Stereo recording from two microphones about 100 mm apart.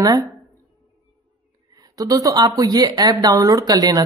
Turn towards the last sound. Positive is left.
turn(degrees=-40)  # may be behind; listen again after turning